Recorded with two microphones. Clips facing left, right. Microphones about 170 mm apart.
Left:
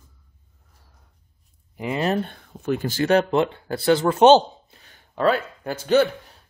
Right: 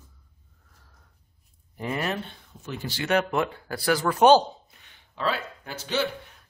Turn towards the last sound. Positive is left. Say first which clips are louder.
# left 10 dB
turn(degrees=50)  # may be behind; listen again after turning